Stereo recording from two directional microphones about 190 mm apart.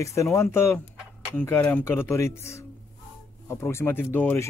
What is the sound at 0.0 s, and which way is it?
Speech, 15° left (ahead or behind).